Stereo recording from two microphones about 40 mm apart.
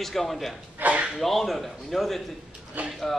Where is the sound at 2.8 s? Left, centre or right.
Right.